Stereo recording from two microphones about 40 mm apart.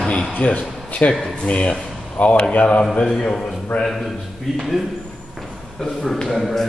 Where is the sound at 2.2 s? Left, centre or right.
Left.